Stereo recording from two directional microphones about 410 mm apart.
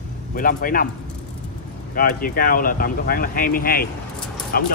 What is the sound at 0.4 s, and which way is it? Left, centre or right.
Speech, left.